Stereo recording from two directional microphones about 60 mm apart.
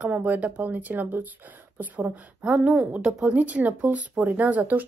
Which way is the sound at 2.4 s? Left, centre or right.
Centre.